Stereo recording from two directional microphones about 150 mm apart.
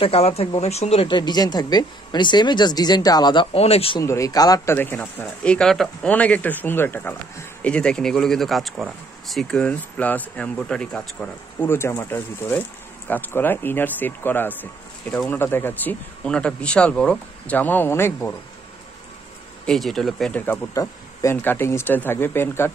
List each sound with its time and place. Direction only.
0.0 s speech: 40° left (ahead or behind)
1.0 s speech: 30° left (ahead or behind)
3.5 s speech: 45° left (ahead or behind)
4.0 s speech: 20° left (ahead or behind)
4.7 s speech: 10° left (ahead or behind)
19.6 s speech: 5° left (ahead or behind)
20.7 s speech: 20° left (ahead or behind)